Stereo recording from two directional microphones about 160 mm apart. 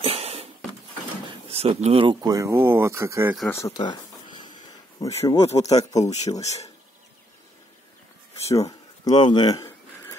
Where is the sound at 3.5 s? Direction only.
20° left (ahead or behind).